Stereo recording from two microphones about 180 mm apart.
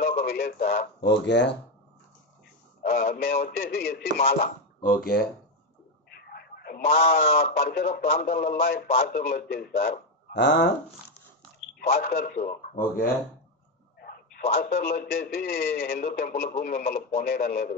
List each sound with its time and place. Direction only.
0.0 s speech: 55° left (ahead or behind); by 1.6 s 75° left (ahead or behind)
2.8 s speech: 55° left (ahead or behind)
6.0 s a sound: 60° left (ahead or behind)
7.3 s speech: 60° left (ahead or behind); by 10.7 s 75° left (ahead or behind)
11.9 s speech: 55° left (ahead or behind)
14.0 s a sound: 55° left (ahead or behind)
14.6 s speech: 55° left (ahead or behind)